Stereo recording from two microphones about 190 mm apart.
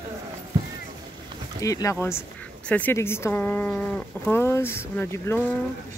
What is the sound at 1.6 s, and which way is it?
Speech, 15° left (ahead or behind).